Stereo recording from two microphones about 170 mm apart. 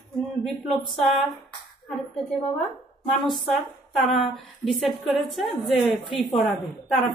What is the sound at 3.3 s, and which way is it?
A woman's voice, centre (ahead or behind).